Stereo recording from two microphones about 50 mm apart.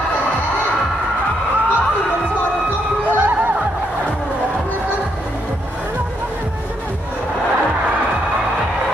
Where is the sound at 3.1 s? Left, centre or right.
Right.